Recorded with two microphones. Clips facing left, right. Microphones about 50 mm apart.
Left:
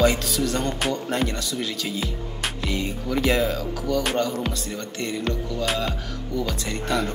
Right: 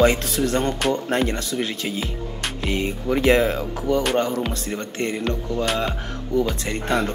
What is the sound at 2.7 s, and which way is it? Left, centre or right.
Speech, right.